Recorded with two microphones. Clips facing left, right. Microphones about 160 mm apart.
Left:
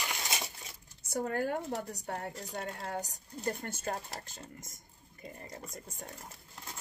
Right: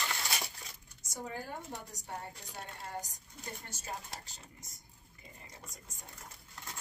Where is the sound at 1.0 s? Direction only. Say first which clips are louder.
Left 9 dB; 60° left (ahead or behind).